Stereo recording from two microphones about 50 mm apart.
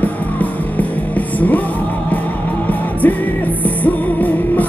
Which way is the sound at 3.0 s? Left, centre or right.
Left.